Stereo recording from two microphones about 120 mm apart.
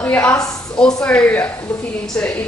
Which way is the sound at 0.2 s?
30° left (ahead or behind).